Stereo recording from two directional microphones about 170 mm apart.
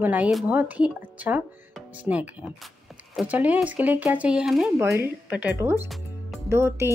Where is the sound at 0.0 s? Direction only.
10° right (ahead or behind).